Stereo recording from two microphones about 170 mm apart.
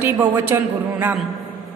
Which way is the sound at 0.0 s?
10° right (ahead or behind).